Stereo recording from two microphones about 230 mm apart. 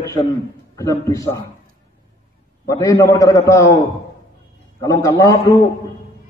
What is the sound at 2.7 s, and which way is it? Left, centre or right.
A man's voice, centre.